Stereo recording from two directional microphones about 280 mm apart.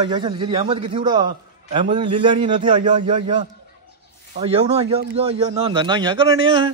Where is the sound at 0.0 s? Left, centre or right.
Centre.